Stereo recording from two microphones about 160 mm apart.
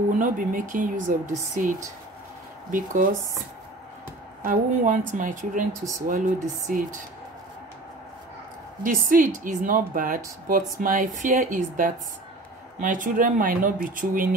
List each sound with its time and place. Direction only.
0.1 s speech: 55° right (ahead or behind)
2.7 s speech: 55° right (ahead or behind)
4.4 s a woman's voice: 55° right (ahead or behind)
5.7 s speech: 20° right (ahead or behind)
6.0 s speech: 55° right (ahead or behind)
8.8 s speech: 55° right (ahead or behind)